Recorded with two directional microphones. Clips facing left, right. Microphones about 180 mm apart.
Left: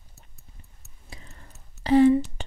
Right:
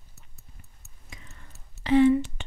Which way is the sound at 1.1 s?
35° left (ahead or behind).